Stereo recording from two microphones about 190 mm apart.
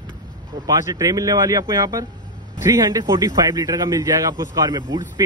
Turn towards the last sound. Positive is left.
turn(degrees=-20)  # may be behind; listen again after turning